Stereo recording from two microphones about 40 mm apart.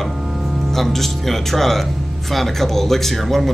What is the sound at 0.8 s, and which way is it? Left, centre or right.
Speech, centre.